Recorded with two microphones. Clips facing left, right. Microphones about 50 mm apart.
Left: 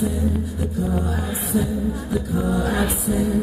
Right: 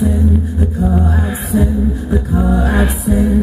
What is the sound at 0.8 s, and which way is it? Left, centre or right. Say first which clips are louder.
Music: right 9 dB; right.